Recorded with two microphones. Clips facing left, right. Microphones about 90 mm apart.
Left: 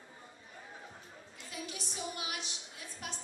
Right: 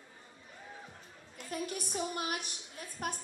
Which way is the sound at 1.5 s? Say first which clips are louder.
Right 7 dB; 50° right (ahead or behind).